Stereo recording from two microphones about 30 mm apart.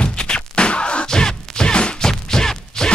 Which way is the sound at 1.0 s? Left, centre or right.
Left.